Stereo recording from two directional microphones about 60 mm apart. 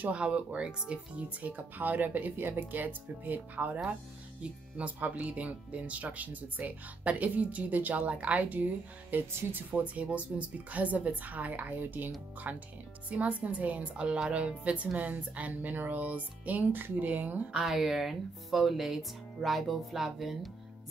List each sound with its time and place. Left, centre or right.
0.1 s a woman's voice: centre
17.5 s speech: centre